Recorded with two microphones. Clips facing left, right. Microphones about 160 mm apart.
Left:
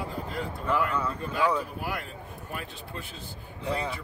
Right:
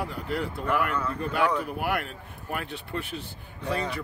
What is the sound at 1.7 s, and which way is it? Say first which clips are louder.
Speech: right 5 dB; 70° right (ahead or behind).